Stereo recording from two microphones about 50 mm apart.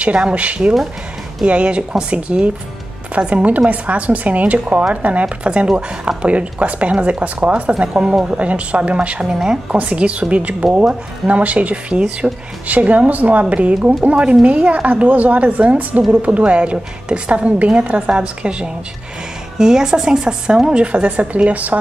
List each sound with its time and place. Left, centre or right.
0.0 s a woman's voice: right
9.7 s a woman's voice: right